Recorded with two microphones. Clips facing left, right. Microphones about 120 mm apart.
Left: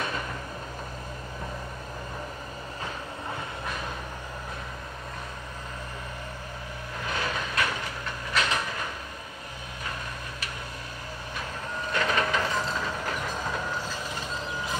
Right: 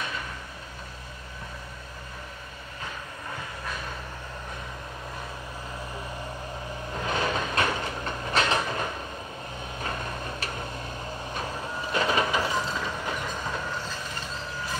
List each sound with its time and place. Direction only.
7.2 s vehicle: 25° right (ahead or behind)
11.9 s train: 20° right (ahead or behind)
12.4 s train: 5° right (ahead or behind)